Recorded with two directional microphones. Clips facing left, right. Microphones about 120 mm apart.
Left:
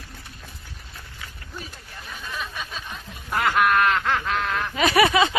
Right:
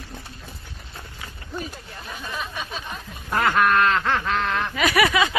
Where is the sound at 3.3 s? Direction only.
5° left (ahead or behind).